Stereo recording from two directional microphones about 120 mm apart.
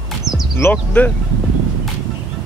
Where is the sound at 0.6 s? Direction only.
15° left (ahead or behind).